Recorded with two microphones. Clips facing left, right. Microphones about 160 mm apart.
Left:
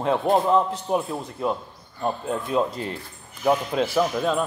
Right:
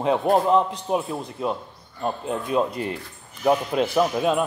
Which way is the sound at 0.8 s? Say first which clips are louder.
Even; 5° right (ahead or behind).